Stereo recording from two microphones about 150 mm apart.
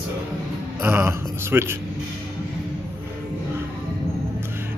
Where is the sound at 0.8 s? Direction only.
15° right (ahead or behind).